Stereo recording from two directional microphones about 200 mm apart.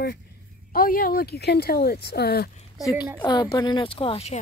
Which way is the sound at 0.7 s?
45° left (ahead or behind).